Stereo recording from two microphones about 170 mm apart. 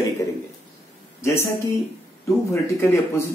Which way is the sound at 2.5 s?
15° left (ahead or behind).